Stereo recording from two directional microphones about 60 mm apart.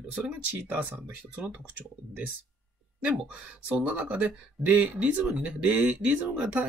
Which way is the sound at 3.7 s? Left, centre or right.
Right.